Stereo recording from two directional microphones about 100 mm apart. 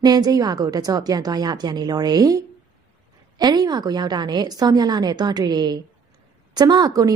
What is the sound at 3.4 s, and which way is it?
A woman's voice, 45° right (ahead or behind).